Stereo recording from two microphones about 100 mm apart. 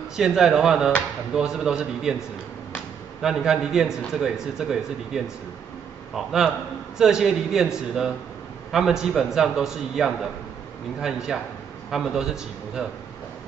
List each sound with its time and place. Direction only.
0.1 s a man's voice: 5° right (ahead or behind)